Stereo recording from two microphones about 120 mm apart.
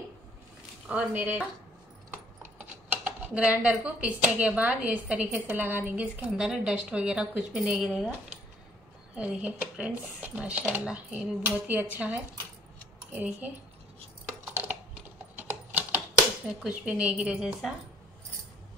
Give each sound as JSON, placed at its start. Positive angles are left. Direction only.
{"t": 0.8, "sound": "speech", "side_deg": -10}
{"t": 2.9, "sound": "speech", "side_deg": -15}
{"t": 14.4, "sound": "typing", "side_deg": -15}
{"t": 16.6, "sound": "a woman's voice", "side_deg": -10}